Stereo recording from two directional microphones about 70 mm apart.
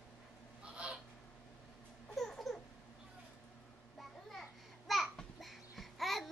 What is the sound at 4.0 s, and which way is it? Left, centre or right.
Babbling, centre.